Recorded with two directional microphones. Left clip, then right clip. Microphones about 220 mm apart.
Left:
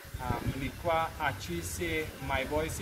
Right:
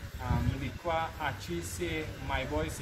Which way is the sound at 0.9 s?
15° left (ahead or behind).